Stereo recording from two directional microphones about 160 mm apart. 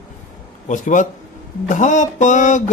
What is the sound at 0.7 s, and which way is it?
Mantra, 50° left (ahead or behind).